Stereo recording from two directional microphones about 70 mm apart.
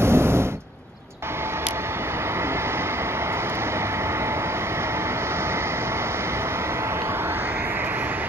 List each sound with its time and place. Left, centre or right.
0.0 s vehicle: right